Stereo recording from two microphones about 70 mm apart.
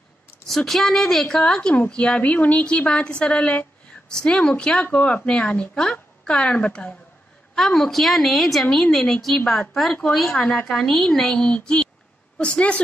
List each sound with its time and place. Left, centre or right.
0.7 s a woman's voice: centre